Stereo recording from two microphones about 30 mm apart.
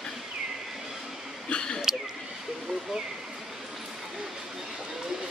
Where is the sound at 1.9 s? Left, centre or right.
Centre.